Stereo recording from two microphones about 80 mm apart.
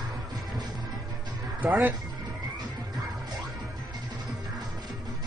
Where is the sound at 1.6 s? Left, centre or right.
Right.